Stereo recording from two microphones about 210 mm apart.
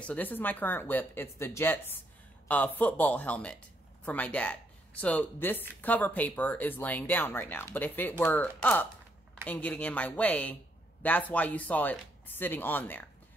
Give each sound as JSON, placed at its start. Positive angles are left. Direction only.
{"t": 0.0, "sound": "speech", "side_deg": 5}